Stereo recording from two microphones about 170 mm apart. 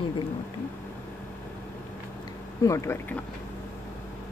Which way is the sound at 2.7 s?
15° left (ahead or behind).